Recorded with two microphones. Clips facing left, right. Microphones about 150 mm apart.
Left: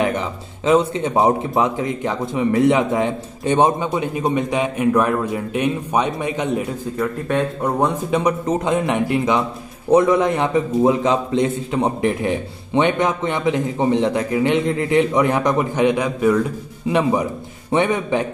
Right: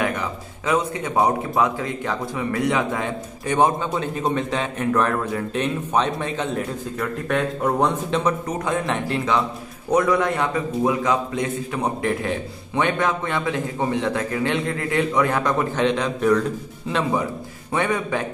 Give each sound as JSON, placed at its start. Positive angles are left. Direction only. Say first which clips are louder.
{"t": 0.0, "sound": "a man's voice", "louder": "left 4 dB", "side_deg": 25}
{"t": 7.6, "sound": "a man's voice", "louder": "left 1 dB", "side_deg": 5}
{"t": 8.5, "sound": "a man's voice", "louder": "left 5 dB", "side_deg": 20}